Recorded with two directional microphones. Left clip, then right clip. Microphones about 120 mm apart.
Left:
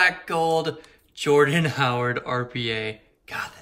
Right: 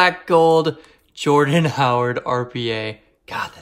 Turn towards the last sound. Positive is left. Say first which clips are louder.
# right 5 dB
turn(degrees=-35)  # may be behind; listen again after turning